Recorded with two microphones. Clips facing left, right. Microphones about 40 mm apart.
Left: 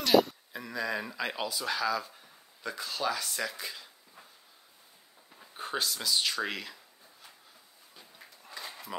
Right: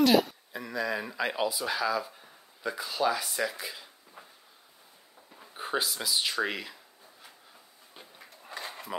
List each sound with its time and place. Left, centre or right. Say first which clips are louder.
0.0 s speech: right 2 dB; centre
5.4 s speech: right 3 dB; centre
8.5 s a sound: right 3 dB; right